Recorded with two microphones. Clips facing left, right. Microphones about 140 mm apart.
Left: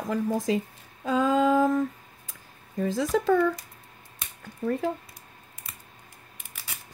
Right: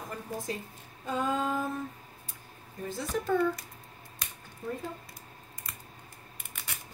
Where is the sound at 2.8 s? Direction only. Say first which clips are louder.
Left 9 dB; 90° left.